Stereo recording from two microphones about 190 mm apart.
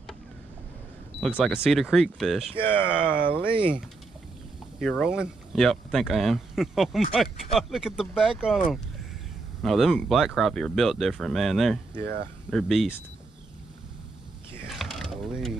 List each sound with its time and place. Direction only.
1.2 s speech: 5° left (ahead or behind)
2.6 s speech: 10° left (ahead or behind)
4.7 s speech: centre (ahead or behind)
12.0 s speech: 60° right (ahead or behind)
12.4 s speech: centre (ahead or behind)
14.7 s mechanisms: centre (ahead or behind)